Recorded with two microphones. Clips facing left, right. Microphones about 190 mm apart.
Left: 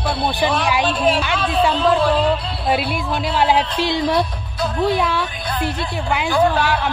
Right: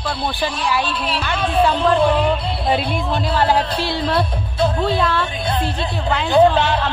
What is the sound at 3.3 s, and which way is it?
Music, 15° left (ahead or behind).